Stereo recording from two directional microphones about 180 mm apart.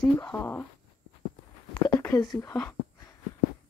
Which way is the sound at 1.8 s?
15° left (ahead or behind).